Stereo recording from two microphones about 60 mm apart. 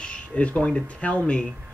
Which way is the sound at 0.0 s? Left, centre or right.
Centre.